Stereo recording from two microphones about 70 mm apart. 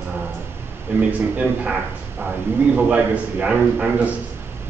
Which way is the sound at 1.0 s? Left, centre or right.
Centre.